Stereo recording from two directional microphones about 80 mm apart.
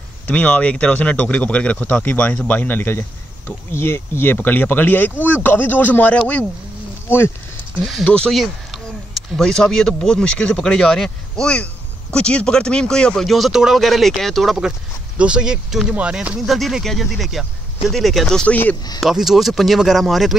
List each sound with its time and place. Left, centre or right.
0.3 s speech: centre
8.0 s speech: centre
8.3 s speech: centre
15.1 s speech: centre
16.4 s speech: centre
18.5 s speech: centre
18.9 s speech: centre